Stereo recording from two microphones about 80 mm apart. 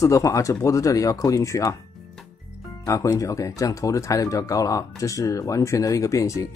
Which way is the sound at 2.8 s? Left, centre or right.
Left.